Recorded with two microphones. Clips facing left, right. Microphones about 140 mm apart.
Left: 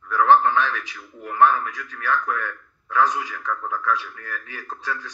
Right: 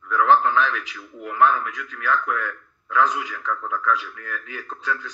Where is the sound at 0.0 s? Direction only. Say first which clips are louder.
Left 1 dB; 35° left (ahead or behind).